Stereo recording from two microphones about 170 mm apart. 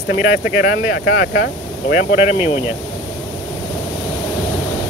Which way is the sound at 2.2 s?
35° left (ahead or behind).